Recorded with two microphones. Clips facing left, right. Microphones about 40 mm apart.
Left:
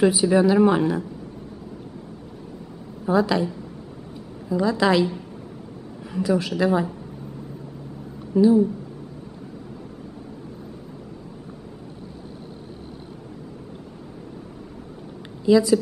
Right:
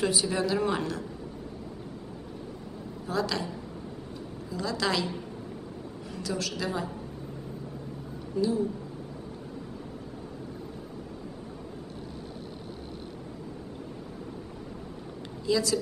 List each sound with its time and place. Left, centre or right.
0.0 s speech: centre
3.1 s a woman's voice: centre
4.5 s speech: centre
6.1 s a woman's voice: centre
8.4 s a woman's voice: left
15.4 s speech: centre